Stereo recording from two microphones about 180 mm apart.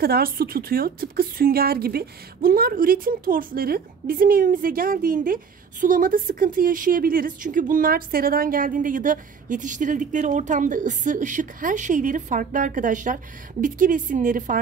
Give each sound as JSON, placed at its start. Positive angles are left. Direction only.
{"t": 0.0, "sound": "speech", "side_deg": -55}